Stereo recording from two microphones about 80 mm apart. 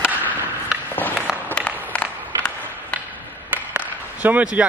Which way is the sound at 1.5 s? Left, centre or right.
Centre.